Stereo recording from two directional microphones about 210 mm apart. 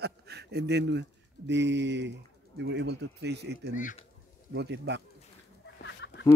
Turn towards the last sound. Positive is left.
turn(degrees=60)  # may be behind; listen again after turning